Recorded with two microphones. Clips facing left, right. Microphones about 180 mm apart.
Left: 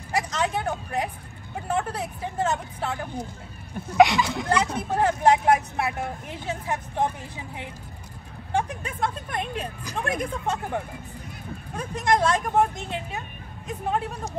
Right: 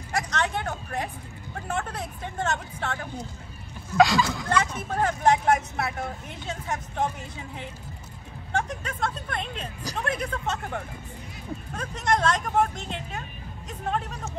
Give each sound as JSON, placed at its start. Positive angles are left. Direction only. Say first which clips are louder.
{"t": 0.1, "sound": "vehicle", "louder": "left 2 dB", "side_deg": 10}
{"t": 1.7, "sound": "speech", "louder": "left 4 dB", "side_deg": 10}
{"t": 5.0, "sound": "speech", "louder": "left 2 dB", "side_deg": 10}
{"t": 8.5, "sound": "speech", "louder": "left 2 dB", "side_deg": 10}